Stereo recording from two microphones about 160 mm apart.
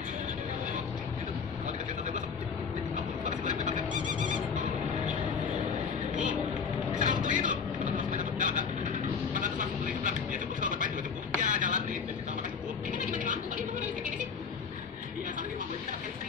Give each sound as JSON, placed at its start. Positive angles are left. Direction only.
{"t": 3.3, "sound": "vehicle", "side_deg": -50}
{"t": 7.0, "sound": "vehicle", "side_deg": -50}
{"t": 11.4, "sound": "radio", "side_deg": -55}
{"t": 12.9, "sound": "a sound", "side_deg": -55}